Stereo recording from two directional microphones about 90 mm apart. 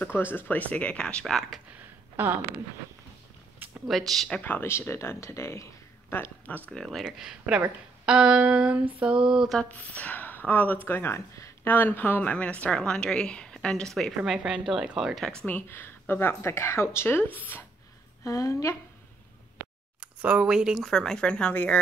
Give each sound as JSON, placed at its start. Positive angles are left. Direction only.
{"t": 0.0, "sound": "speech", "side_deg": 25}
{"t": 2.2, "sound": "speech", "side_deg": -25}
{"t": 3.8, "sound": "speech", "side_deg": 0}
{"t": 4.4, "sound": "speech", "side_deg": 25}
{"t": 6.7, "sound": "speech", "side_deg": 5}
{"t": 7.1, "sound": "speech", "side_deg": -10}
{"t": 9.6, "sound": "speech", "side_deg": 15}
{"t": 11.6, "sound": "speech", "side_deg": 20}
{"t": 15.4, "sound": "speech", "side_deg": 20}
{"t": 18.2, "sound": "a woman's voice", "side_deg": 35}
{"t": 20.0, "sound": "speech", "side_deg": -15}
{"t": 20.9, "sound": "speech", "side_deg": 5}